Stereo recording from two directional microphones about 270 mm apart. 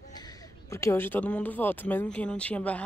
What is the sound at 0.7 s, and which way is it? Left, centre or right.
Speech, centre.